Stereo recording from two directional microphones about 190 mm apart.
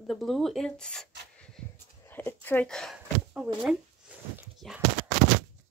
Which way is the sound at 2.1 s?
10° left (ahead or behind).